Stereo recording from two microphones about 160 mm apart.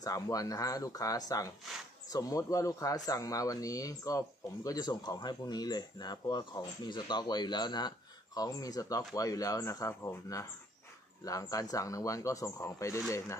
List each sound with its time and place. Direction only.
0.0 s speech: 20° left (ahead or behind)